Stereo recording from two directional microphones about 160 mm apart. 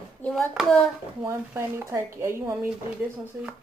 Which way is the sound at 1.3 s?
15° right (ahead or behind).